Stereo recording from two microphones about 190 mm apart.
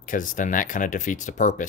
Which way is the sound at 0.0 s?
45° left (ahead or behind).